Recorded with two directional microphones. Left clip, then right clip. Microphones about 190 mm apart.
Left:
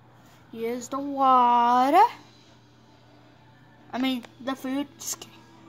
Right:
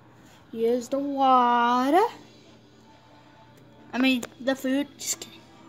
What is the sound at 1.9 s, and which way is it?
Speech, 30° left (ahead or behind).